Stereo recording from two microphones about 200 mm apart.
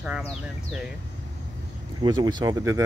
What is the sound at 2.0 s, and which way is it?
Speech, 20° right (ahead or behind).